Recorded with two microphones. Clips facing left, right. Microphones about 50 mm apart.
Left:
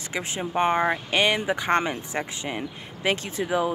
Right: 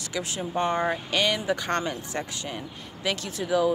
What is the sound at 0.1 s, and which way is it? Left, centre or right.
Speech, left.